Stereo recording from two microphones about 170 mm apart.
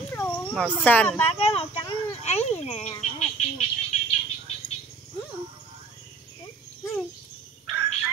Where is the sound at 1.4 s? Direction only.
35° left (ahead or behind).